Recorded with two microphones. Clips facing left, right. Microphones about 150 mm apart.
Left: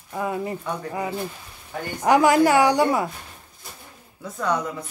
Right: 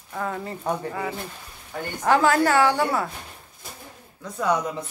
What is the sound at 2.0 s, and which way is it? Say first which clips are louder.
A woman's voice: left 3 dB; 15° left (ahead or behind).